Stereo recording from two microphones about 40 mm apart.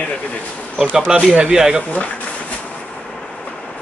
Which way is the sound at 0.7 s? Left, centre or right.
Centre.